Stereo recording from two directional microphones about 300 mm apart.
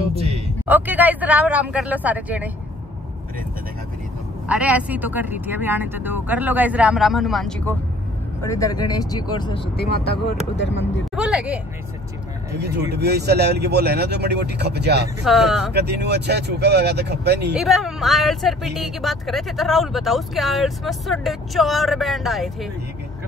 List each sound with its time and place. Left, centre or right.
0.7 s speech: centre
4.5 s speech: centre
10.6 s speech: left
11.1 s speech: centre
12.5 s speech: right
15.2 s speech: centre
15.7 s speech: right
17.6 s speech: centre